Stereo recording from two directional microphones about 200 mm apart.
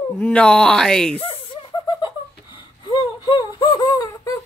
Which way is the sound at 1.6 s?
25° left (ahead or behind).